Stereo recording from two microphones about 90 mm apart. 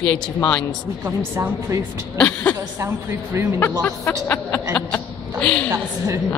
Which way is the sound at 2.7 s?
30° right (ahead or behind).